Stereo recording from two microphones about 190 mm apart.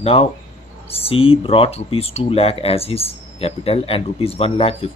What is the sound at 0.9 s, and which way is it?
Speech, 30° left (ahead or behind).